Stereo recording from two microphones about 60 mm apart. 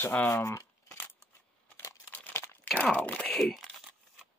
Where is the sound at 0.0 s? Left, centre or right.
Left.